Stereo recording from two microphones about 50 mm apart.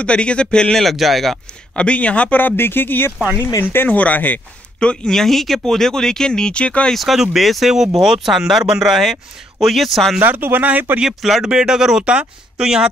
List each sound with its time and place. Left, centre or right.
0.0 s speech: left
0.7 s speech: centre
1.8 s speech: left
2.3 s speech: left
3.9 s speech: left
4.7 s speech: centre
6.9 s speech: centre
10.2 s speech: right
11.4 s speech: centre
12.0 s speech: right